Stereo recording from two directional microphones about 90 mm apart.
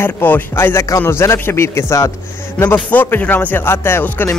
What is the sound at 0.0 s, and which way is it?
Speech, 25° left (ahead or behind).